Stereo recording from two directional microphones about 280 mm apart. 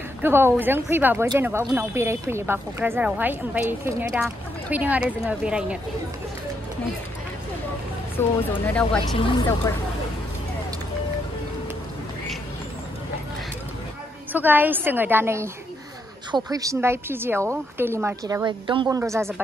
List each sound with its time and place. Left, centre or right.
0.2 s speech: centre
8.2 s speech: centre
9.1 s speech: centre
14.3 s speech: centre